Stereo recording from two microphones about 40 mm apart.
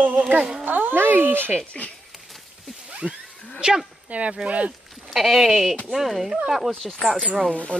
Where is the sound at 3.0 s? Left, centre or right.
Right.